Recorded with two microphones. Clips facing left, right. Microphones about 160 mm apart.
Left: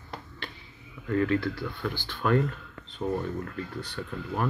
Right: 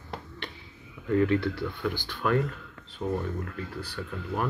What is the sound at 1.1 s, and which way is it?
Speech, 20° right (ahead or behind).